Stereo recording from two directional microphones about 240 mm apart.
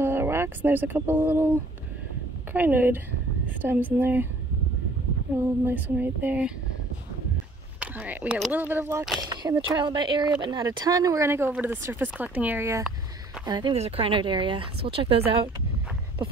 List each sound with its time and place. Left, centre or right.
0.0 s speech: centre
2.5 s speech: centre
5.7 s speech: centre
7.8 s speech: centre
9.3 s speech: centre